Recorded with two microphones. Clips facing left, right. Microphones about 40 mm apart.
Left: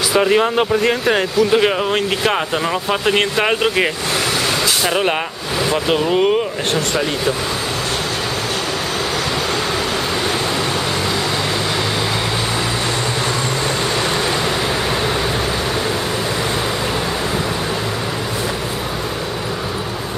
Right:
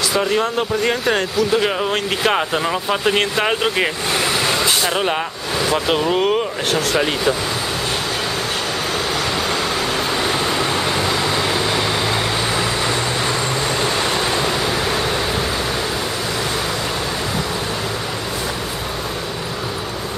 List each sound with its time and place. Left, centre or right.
0.1 s speech: centre
0.8 s speech: centre
5.7 s speech: centre